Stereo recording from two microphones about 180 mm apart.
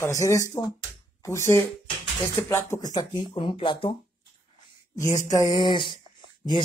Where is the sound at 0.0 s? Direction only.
15° left (ahead or behind).